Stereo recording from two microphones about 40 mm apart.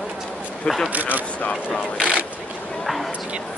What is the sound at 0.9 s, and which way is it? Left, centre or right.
Speech, right.